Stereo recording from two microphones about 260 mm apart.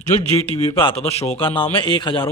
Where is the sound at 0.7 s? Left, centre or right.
Left.